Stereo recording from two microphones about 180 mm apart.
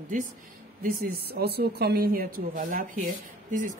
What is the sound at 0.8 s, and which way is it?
A woman's voice, 60° right (ahead or behind).